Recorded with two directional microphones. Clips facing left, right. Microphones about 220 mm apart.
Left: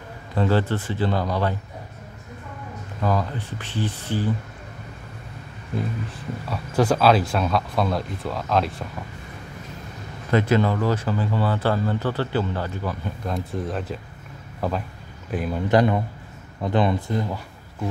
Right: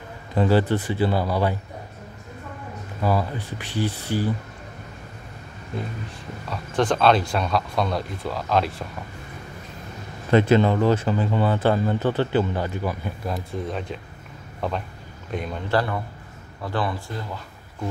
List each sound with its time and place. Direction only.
0.3 s speech: 10° right (ahead or behind)
3.0 s speech: 10° right (ahead or behind)
6.5 s speech: 5° left (ahead or behind)
10.3 s speech: 25° right (ahead or behind); by 15.6 s 5° left (ahead or behind)
15.7 s speech: 20° left (ahead or behind)